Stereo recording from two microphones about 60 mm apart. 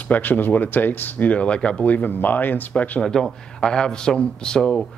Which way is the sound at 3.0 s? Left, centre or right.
Centre.